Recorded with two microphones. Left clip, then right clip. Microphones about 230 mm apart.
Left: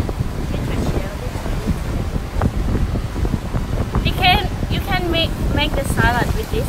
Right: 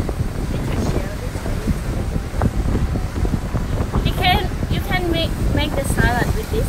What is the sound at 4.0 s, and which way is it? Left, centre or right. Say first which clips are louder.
Vehicle: left 3 dB; centre.